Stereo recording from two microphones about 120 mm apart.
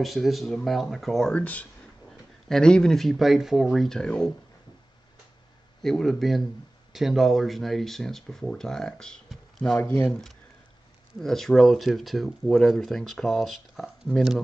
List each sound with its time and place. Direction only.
0.0 s speech: centre (ahead or behind)
5.8 s speech: 5° left (ahead or behind)